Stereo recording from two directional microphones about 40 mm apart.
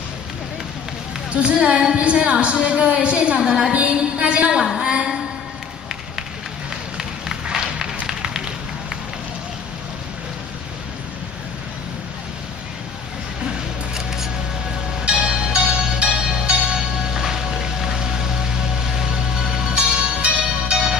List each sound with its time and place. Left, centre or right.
1.3 s a woman's voice: right
4.7 s a sound: right
8.1 s a sound: centre
13.9 s music: centre
15.0 s music: right
16.2 s music: centre
16.4 s music: right
17.1 s music: centre